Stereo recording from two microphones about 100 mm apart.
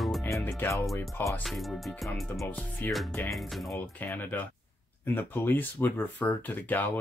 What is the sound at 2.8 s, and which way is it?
Speech, 15° left (ahead or behind).